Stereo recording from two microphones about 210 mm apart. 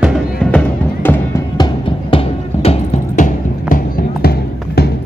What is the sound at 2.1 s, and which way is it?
Music, 25° left (ahead or behind).